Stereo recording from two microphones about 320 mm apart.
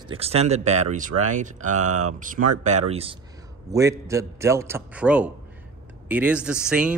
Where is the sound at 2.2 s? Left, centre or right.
Right.